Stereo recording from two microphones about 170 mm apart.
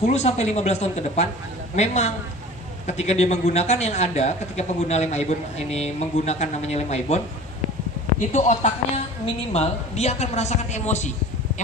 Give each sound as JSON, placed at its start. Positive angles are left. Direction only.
{"t": 0.0, "sound": "a man's voice", "side_deg": 40}
{"t": 8.2, "sound": "a man's voice", "side_deg": 45}